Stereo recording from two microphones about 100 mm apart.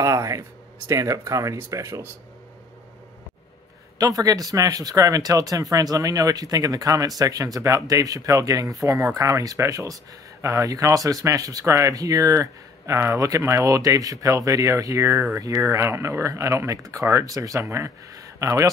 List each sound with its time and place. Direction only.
0.0 s speech: 35° right (ahead or behind)
4.0 s speech: 35° right (ahead or behind)